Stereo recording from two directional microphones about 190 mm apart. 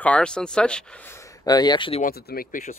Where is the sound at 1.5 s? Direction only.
20° left (ahead or behind).